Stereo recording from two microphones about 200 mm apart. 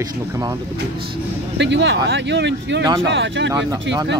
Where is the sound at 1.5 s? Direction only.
60° right (ahead or behind).